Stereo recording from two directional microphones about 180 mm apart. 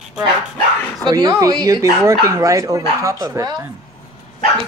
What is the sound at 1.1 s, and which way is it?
Speech, 20° right (ahead or behind).